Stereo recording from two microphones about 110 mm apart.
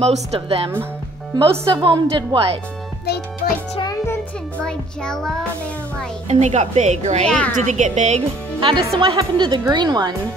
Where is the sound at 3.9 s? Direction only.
25° left (ahead or behind).